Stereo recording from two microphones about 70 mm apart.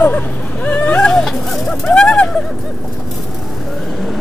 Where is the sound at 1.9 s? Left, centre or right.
Centre.